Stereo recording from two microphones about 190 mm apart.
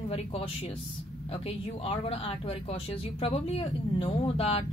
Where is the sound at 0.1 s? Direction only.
30° left (ahead or behind).